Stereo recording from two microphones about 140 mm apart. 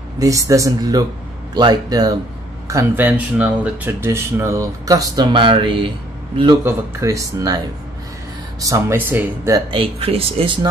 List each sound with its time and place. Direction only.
0.2 s speech: 25° right (ahead or behind)
2.7 s speech: 15° right (ahead or behind); by 6.6 s 35° right (ahead or behind)
6.6 s speech: 20° right (ahead or behind)
9.7 s speech: 40° right (ahead or behind)